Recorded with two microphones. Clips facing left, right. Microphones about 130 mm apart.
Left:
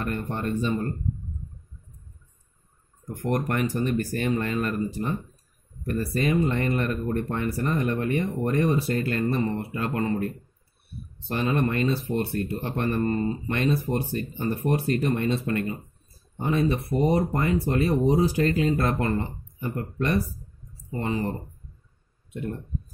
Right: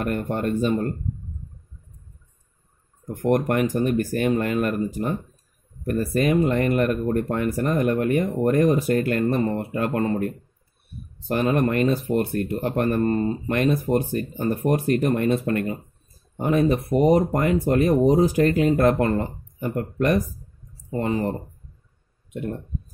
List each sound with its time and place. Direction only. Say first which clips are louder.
0.0 s speech: right 5 dB; 50° right (ahead or behind)
3.2 s speech: right 5 dB; 55° right (ahead or behind)
6.5 s speech: right 5 dB; 55° right (ahead or behind)
11.3 s speech: right 4 dB; 50° right (ahead or behind)
17.1 s speech: right 4 dB; 55° right (ahead or behind); by 22.6 s 35° right (ahead or behind)